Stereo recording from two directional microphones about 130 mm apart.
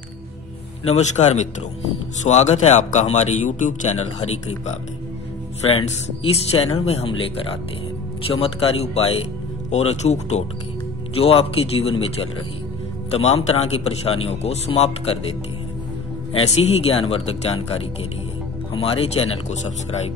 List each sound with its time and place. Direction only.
0.8 s speech: 60° left (ahead or behind)
5.7 s a man's voice: 50° left (ahead or behind)
11.1 s a man's voice: 45° left (ahead or behind)
16.3 s a man's voice: 55° left (ahead or behind)
18.7 s a man's voice: 45° left (ahead or behind); by 20.0 s 60° left (ahead or behind)